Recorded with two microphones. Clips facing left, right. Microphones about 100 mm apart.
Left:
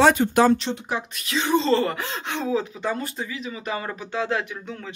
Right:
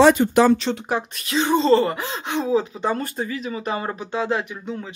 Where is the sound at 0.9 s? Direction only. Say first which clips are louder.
Right 3 dB; 40° right (ahead or behind).